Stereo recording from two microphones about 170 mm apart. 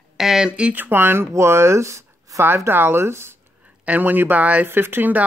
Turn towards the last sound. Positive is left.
turn(degrees=-10)  # may be behind; listen again after turning